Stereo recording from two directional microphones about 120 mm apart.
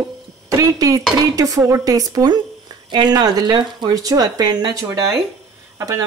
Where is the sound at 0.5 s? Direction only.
30° right (ahead or behind).